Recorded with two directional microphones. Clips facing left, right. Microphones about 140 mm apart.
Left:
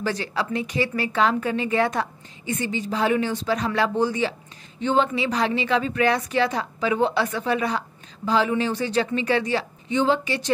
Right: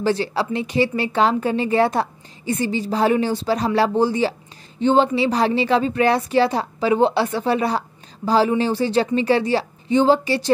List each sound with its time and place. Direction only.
0.0 s speech: 30° right (ahead or behind)